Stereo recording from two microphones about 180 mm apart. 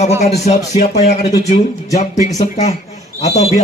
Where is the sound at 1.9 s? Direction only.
40° left (ahead or behind).